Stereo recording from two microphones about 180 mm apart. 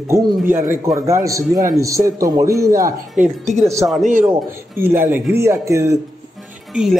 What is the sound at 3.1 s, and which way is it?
Speech, centre (ahead or behind).